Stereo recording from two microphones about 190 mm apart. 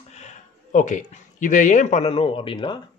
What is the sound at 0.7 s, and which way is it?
Speech, 40° left (ahead or behind).